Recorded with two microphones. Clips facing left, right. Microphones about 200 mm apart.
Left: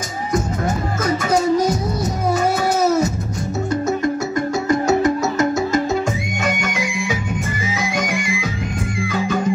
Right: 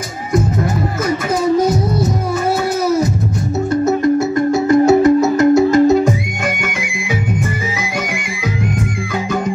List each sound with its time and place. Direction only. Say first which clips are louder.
4.8 s music: right 7 dB; 60° right (ahead or behind)